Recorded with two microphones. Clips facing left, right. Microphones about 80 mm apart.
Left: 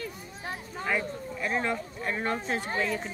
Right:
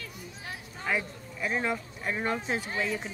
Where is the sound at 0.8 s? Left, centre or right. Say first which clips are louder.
Left 1 dB; centre.